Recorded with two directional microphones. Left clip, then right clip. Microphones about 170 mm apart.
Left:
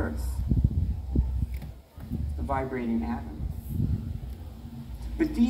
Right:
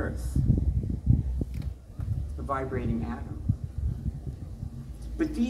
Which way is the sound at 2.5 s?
20° right (ahead or behind).